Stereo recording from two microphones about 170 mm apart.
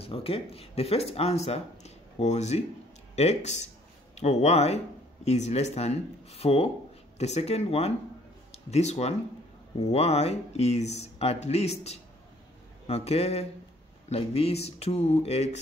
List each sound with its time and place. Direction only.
0.0 s speech: 35° left (ahead or behind)